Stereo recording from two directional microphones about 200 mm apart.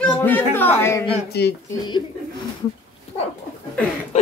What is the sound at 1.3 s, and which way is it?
Speech, 55° left (ahead or behind).